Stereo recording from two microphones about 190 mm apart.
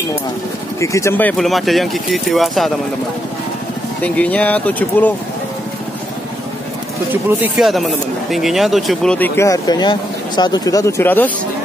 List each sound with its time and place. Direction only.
0.7 s speech: 15° left (ahead or behind); by 2.7 s centre (ahead or behind)
4.0 s speech: 5° left (ahead or behind)
7.1 s speech: 10° right (ahead or behind); by 11.3 s 10° left (ahead or behind)